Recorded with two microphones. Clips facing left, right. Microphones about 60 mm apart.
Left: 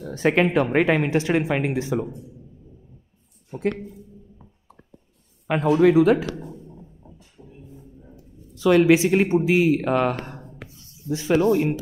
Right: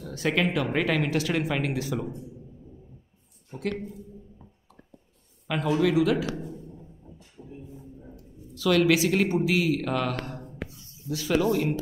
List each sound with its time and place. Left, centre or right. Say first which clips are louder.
0.0 s a woman's voice: left 6 dB; left
5.5 s a man's voice: left 7 dB; left
7.4 s a sound: right 2 dB; centre
8.5 s a woman's voice: left 6 dB; left